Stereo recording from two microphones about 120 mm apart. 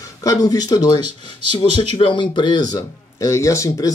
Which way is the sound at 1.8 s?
45° left (ahead or behind).